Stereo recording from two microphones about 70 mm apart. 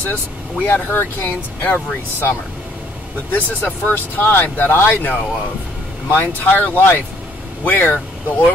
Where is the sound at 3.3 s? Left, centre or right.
Left.